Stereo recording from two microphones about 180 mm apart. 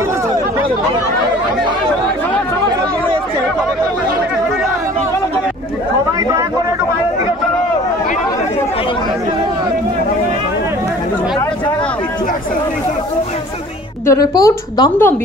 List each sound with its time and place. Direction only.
14.0 s a woman's voice: 20° left (ahead or behind)